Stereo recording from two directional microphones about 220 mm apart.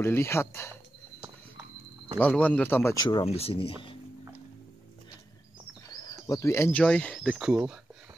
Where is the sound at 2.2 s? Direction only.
5° left (ahead or behind); by 3.9 s 25° left (ahead or behind).